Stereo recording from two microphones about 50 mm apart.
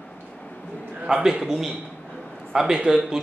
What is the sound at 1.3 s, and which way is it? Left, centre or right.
A man's voice, centre.